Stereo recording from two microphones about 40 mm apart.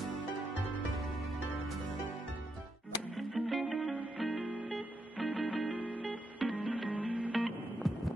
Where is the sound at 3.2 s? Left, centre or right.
Centre.